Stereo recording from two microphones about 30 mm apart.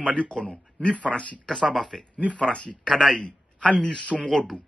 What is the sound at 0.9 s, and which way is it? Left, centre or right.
Speech, left.